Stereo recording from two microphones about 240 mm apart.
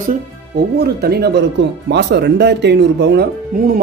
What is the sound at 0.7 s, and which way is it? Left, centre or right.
Speech, right.